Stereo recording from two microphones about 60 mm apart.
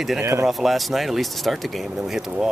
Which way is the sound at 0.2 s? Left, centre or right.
Right.